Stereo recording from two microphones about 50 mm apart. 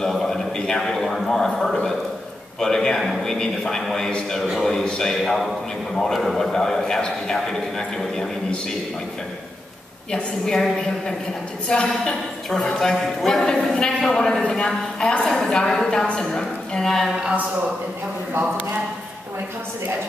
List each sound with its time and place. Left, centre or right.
0.0 s a man's voice: centre
10.1 s a woman's voice: centre